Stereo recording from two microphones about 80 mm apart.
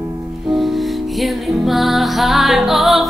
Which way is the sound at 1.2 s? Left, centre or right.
Centre.